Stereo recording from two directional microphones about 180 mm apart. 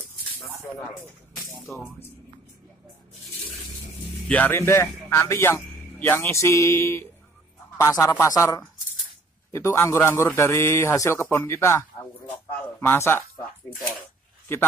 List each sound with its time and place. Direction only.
1.3 s music: centre (ahead or behind)
4.3 s a man's voice: 10° left (ahead or behind)
12.8 s a man's voice: 10° left (ahead or behind)